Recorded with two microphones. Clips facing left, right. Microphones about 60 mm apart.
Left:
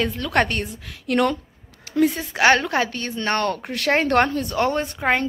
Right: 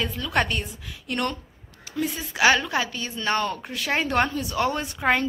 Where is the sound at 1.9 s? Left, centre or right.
Left.